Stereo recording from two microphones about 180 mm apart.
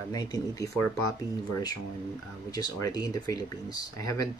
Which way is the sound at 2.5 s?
20° left (ahead or behind).